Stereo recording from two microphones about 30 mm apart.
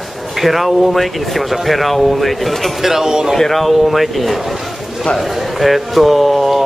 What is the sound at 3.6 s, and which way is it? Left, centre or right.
Speech, centre.